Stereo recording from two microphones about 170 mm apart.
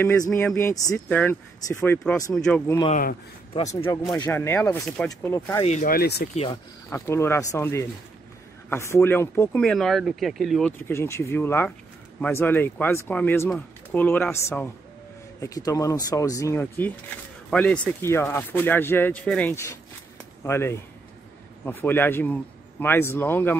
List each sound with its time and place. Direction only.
0.3 s speech: 5° left (ahead or behind)
0.6 s speech: 15° left (ahead or behind)
2.3 s speech: 5° left (ahead or behind)
2.9 s speech: 55° left (ahead or behind)
3.7 s speech: 15° left (ahead or behind)
4.8 s speech: 5° left (ahead or behind)
5.6 s speech: 45° left (ahead or behind); by 6.2 s 65° left (ahead or behind)
6.3 s speech: 35° left (ahead or behind)
6.9 s speech: 15° left (ahead or behind); by 10.7 s centre (ahead or behind)
10.8 s speech: 15° left (ahead or behind)